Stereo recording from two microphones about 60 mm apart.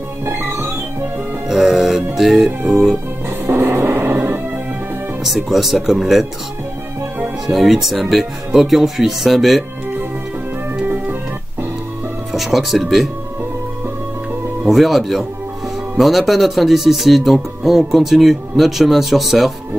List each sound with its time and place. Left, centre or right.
0.2 s music: right
1.5 s music: centre
2.7 s speech: centre
3.4 s music: right
5.2 s speech: centre
7.4 s speech: centre
12.3 s speech: centre
14.7 s speech: centre